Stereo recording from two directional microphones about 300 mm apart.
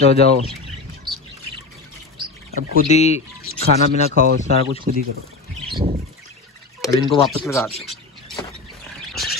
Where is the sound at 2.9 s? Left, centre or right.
Left.